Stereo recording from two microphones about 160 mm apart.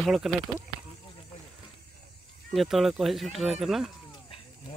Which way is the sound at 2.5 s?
Centre (ahead or behind).